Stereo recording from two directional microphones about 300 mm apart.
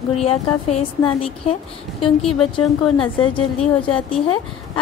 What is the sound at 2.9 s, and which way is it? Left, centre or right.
Speech, centre.